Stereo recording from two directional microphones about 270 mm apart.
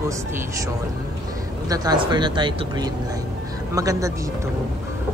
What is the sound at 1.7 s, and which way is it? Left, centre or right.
Speech, centre.